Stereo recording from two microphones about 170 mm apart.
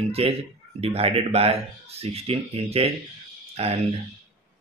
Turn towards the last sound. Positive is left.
turn(degrees=-35)  # may be behind; listen again after turning